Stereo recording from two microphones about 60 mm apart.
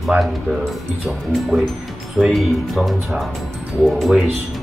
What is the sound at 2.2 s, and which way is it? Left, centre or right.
Speech, centre.